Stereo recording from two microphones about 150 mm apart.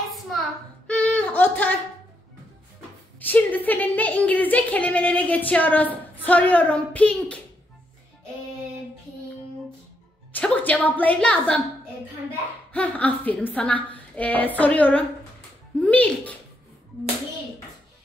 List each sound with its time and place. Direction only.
0.8 s a sound: 10° left (ahead or behind)
3.2 s a woman's voice: 10° left (ahead or behind)
10.3 s a woman's voice: 10° left (ahead or behind)
12.7 s a woman's voice: 10° left (ahead or behind)